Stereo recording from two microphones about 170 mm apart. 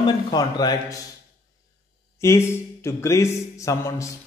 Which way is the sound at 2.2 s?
15° left (ahead or behind).